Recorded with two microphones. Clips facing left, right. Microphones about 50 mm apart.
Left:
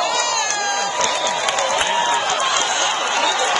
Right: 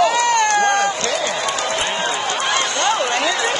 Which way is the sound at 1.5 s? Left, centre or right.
Left.